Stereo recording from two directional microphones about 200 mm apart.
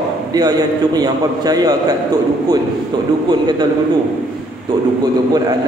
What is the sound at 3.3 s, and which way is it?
Speech, 20° right (ahead or behind).